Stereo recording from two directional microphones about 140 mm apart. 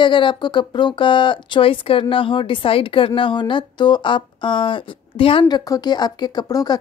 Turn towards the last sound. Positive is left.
turn(degrees=30)  # may be behind; listen again after turning